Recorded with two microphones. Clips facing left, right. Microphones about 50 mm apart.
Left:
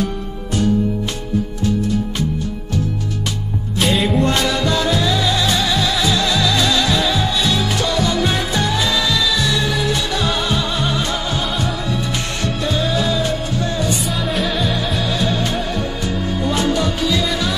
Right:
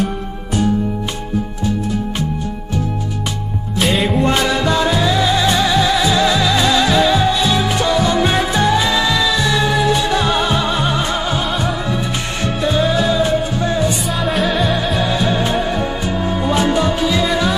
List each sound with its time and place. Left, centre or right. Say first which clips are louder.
3.8 s music: right 1 dB; centre
4.1 s music: right 2 dB; centre
14.2 s music: right 5 dB; centre
15.0 s music: right 3 dB; right